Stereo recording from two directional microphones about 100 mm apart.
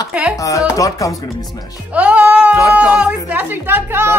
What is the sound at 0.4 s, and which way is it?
Chopping, 35° left (ahead or behind).